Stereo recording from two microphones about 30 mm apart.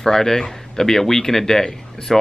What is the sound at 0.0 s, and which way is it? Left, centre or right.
A man's voice, centre.